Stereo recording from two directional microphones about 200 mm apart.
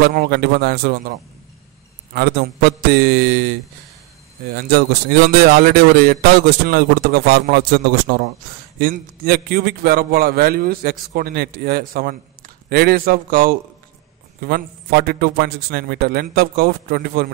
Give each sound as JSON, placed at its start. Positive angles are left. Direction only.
{"t": 0.0, "sound": "a man's voice", "side_deg": -50}
{"t": 2.1, "sound": "a man's voice", "side_deg": -50}
{"t": 4.6, "sound": "a man's voice", "side_deg": -50}